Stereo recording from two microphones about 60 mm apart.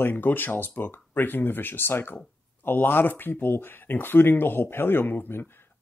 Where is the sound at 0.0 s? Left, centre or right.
Left.